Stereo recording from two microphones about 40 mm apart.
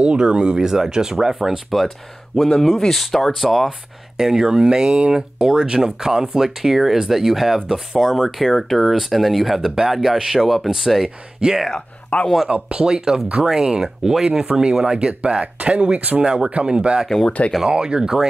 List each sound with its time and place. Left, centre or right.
0.0 s speech: right; by 3.7 s centre
4.2 s speech: centre
12.1 s speech: left
12.4 s speech: right
12.8 s speech: centre; by 15.8 s right
16.2 s speech: right